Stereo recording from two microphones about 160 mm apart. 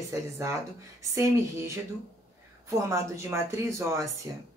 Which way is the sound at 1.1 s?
15° right (ahead or behind).